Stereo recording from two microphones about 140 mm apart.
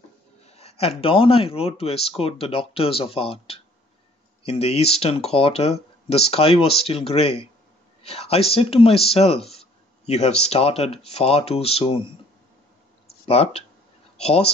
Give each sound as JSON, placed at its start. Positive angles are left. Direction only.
{"t": 0.4, "sound": "speech", "side_deg": 45}
{"t": 13.3, "sound": "speech", "side_deg": 45}